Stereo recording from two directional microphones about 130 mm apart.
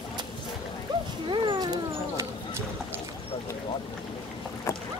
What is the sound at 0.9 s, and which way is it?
Dog, 35° right (ahead or behind).